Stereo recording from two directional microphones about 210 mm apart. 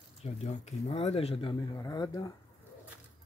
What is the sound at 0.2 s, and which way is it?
Speech, 30° left (ahead or behind).